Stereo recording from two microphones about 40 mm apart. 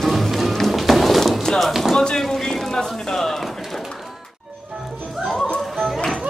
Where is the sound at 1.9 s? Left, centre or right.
Centre.